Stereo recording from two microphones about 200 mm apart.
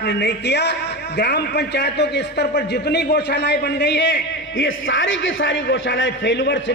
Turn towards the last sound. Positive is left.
turn(degrees=60)  # may be behind; listen again after turning